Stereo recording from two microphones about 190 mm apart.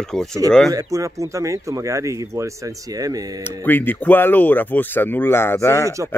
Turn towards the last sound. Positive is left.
turn(degrees=15)  # may be behind; listen again after turning